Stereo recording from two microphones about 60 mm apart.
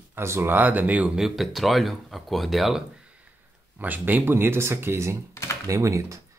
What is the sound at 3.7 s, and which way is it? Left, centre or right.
Speech, right.